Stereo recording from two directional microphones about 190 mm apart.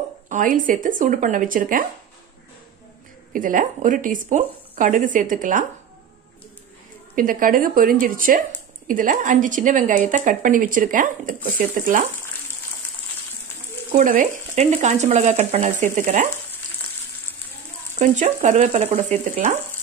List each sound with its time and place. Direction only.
0.3 s a woman's voice: 45° right (ahead or behind)
3.3 s a woman's voice: 45° right (ahead or behind)
7.2 s a woman's voice: 45° right (ahead or behind)
13.9 s speech: 40° right (ahead or behind)
17.9 s a woman's voice: 40° right (ahead or behind)